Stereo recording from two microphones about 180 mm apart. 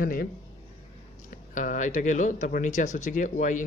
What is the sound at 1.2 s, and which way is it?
Speech, 45° left (ahead or behind).